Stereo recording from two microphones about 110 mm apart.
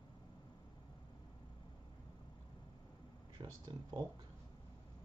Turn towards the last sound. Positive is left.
turn(degrees=-35)  # may be behind; listen again after turning